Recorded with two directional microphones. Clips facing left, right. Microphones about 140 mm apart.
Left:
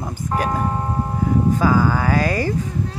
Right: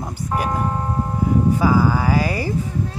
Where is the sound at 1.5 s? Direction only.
10° right (ahead or behind).